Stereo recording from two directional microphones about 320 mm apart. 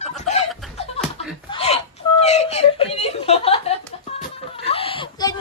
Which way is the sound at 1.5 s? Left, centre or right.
Centre.